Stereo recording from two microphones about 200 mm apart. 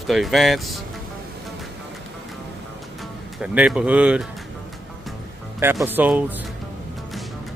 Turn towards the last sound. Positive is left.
turn(degrees=-10)  # may be behind; listen again after turning